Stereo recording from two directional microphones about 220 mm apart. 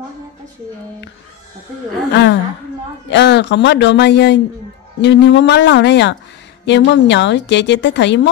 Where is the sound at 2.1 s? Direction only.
50° left (ahead or behind).